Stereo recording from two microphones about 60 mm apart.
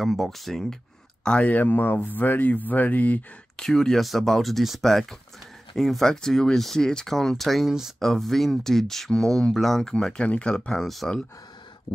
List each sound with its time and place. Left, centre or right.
0.0 s speech: centre
1.2 s speech: centre
3.5 s speech: centre